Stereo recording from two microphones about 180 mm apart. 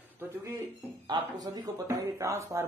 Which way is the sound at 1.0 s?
20° right (ahead or behind).